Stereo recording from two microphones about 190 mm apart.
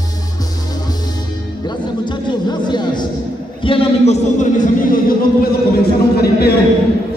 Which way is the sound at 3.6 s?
30° left (ahead or behind).